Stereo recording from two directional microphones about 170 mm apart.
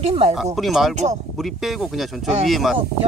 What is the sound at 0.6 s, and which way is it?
Speech, centre (ahead or behind).